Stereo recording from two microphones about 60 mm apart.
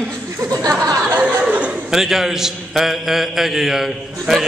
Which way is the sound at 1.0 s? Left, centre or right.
Right.